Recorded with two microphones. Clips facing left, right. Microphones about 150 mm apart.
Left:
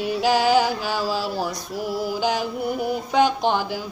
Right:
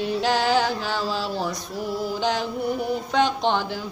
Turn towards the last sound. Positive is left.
turn(degrees=5)  # may be behind; listen again after turning